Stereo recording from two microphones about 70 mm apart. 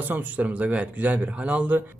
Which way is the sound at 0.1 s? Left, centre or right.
Right.